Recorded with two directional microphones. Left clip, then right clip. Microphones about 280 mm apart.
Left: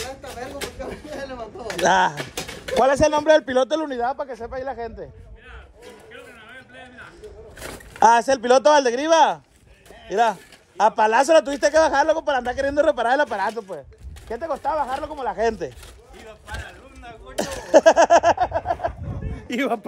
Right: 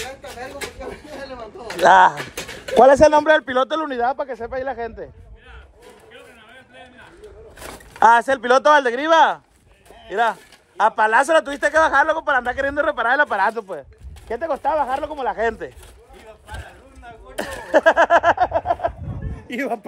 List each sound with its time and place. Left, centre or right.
1.8 s speech: centre
4.0 s speech: right
6.1 s a sound: centre
7.5 s rowboat: centre
8.1 s speech: centre
8.4 s speech: centre
8.7 s speech: centre
12.7 s speech: centre
13.3 s speech: centre
16.2 s a sound: centre
17.6 s a sound: centre